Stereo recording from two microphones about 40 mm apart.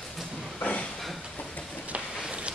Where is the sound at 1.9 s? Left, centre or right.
Right.